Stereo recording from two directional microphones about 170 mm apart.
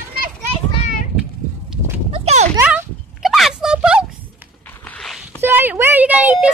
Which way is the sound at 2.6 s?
5° right (ahead or behind).